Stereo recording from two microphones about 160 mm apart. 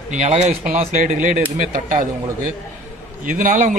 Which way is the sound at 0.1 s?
45° right (ahead or behind).